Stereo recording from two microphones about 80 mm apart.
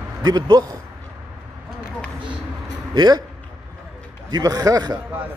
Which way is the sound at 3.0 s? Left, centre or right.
Right.